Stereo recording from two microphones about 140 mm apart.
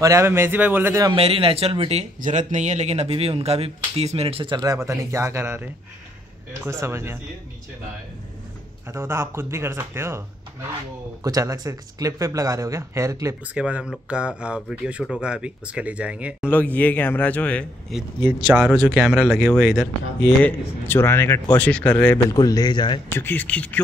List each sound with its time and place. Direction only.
0.0 s speech: 20° right (ahead or behind)
1.1 s speech: 40° right (ahead or behind)
2.1 s speech: 65° right (ahead or behind); by 4.6 s 40° right (ahead or behind)
4.6 s speech: 25° right (ahead or behind)
8.9 s speech: 15° right (ahead or behind)
11.2 s speech: 25° right (ahead or behind)
13.6 s speech: 5° right (ahead or behind)
16.4 s speech: 10° left (ahead or behind)
18.5 s speech: 10° right (ahead or behind)
20.4 s speech: 15° left (ahead or behind)
22.3 s a man's voice: 25° left (ahead or behind)
23.1 s speech: 15° left (ahead or behind)